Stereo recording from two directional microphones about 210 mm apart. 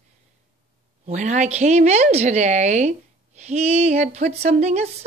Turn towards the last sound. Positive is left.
turn(degrees=-30)  # may be behind; listen again after turning